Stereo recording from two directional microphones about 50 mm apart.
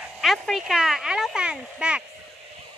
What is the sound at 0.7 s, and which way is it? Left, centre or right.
A child's voice, centre.